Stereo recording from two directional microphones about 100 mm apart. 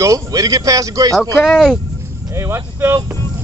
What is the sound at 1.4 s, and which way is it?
Speech, 5° left (ahead or behind).